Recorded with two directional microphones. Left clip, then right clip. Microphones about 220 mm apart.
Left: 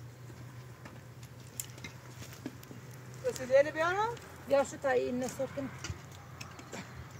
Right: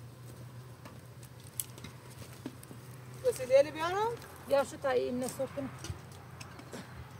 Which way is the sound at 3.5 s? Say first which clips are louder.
Left 1 dB; 55° right (ahead or behind).